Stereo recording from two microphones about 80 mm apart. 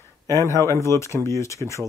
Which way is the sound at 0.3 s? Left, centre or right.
Left.